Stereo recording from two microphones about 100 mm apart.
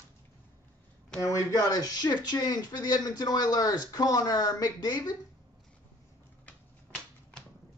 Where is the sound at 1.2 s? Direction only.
35° left (ahead or behind).